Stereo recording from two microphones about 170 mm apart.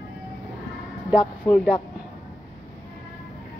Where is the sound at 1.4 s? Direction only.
10° left (ahead or behind).